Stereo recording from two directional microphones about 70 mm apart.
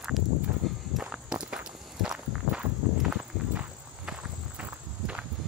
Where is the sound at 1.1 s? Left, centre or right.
Centre.